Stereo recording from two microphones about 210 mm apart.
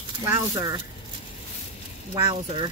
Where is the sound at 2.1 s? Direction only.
20° right (ahead or behind).